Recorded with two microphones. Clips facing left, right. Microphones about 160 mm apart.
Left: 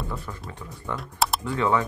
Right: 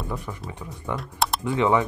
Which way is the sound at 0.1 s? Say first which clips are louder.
Right 3 dB; 15° right (ahead or behind).